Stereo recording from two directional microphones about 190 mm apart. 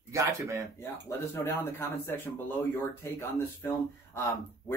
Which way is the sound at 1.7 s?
10° left (ahead or behind).